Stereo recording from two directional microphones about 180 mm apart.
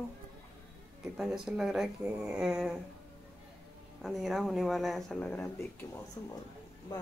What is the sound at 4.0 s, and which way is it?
Speech, centre (ahead or behind).